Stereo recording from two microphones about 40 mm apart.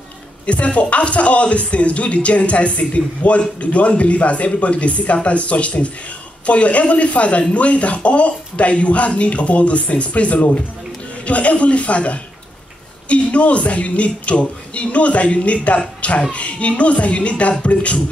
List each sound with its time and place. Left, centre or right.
0.5 s speech: left